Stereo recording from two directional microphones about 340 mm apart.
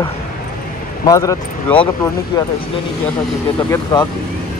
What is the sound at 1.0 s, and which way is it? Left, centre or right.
Speech, centre.